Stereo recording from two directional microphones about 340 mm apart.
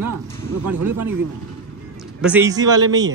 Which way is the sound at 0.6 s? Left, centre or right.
Right.